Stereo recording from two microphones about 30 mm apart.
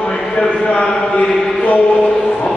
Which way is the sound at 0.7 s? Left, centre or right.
Left.